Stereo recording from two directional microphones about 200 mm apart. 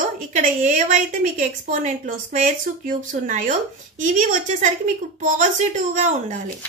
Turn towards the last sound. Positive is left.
turn(degrees=-35)  # may be behind; listen again after turning